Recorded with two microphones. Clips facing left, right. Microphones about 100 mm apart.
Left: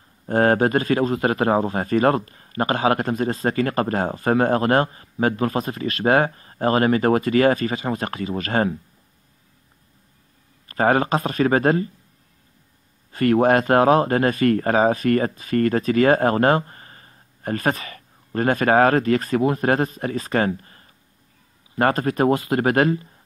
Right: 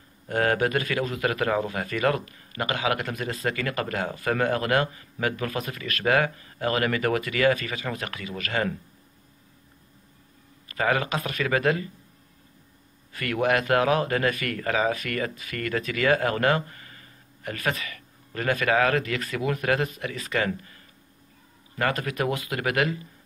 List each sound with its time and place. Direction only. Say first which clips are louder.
0.3 s speech: left 6 dB; 35° left (ahead or behind)
10.7 s speech: left 7 dB; 35° left (ahead or behind)
13.1 s speech: left 8 dB; 35° left (ahead or behind)